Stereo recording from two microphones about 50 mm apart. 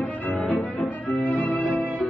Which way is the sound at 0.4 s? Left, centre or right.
Centre.